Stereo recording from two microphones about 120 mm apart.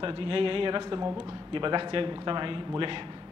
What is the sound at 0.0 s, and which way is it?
A man's voice, 45° right (ahead or behind).